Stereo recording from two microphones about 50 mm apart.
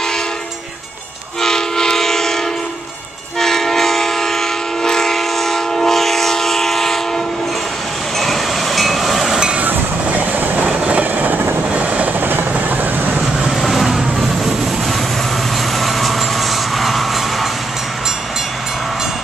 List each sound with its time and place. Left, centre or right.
1.4 s train: centre
8.2 s train: centre
9.7 s train: right
10.6 s train: right
13.5 s vehicle: centre